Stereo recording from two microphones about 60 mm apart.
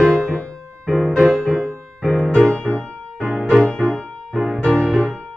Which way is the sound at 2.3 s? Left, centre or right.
Centre.